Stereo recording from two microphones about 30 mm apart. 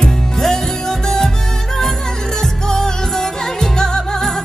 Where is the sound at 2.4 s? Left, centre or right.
Centre.